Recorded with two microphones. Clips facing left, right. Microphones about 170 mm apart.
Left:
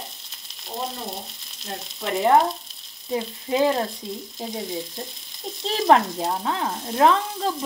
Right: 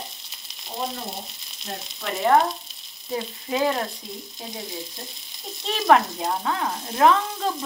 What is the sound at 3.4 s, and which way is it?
Frying, 25° left (ahead or behind).